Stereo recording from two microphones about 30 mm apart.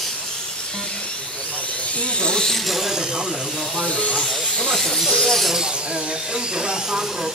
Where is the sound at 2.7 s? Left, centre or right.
Centre.